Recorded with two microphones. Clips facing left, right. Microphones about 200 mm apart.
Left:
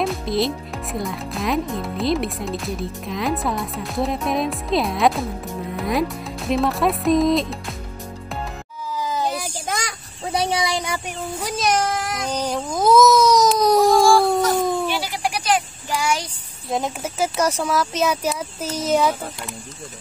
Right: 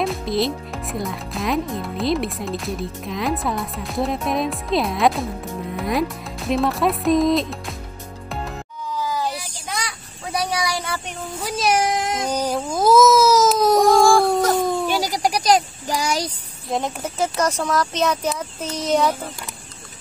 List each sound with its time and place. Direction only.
0.0 s speech: centre (ahead or behind)
9.0 s a sound: 20° left (ahead or behind)
9.3 s child singing: 45° left (ahead or behind)
10.2 s child singing: 25° left (ahead or behind)
11.4 s baby cry: 5° right (ahead or behind)
14.9 s a sound: 40° right (ahead or behind)
16.6 s speech: centre (ahead or behind)